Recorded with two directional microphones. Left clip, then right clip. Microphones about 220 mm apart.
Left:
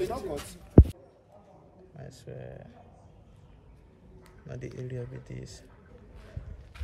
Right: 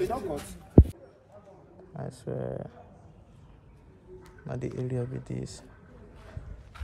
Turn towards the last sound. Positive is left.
turn(degrees=10)  # may be behind; listen again after turning